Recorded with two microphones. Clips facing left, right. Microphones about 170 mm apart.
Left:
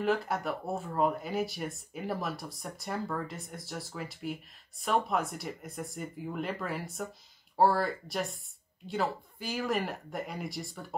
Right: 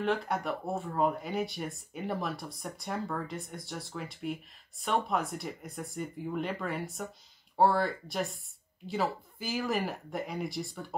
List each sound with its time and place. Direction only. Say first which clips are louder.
0.0 s speech: left 1 dB; centre (ahead or behind)